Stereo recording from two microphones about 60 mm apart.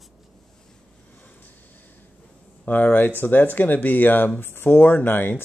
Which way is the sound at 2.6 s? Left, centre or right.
Left.